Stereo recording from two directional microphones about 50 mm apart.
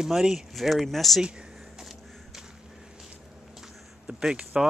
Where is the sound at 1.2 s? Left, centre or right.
Centre.